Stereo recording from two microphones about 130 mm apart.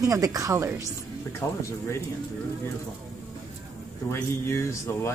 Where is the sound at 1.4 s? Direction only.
25° left (ahead or behind).